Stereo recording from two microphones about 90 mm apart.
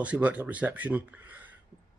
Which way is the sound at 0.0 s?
15° right (ahead or behind).